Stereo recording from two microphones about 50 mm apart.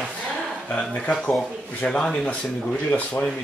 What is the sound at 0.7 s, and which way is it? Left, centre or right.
Speech, left.